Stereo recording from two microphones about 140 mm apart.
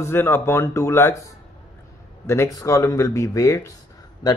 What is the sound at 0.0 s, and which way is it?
Speech, 15° left (ahead or behind).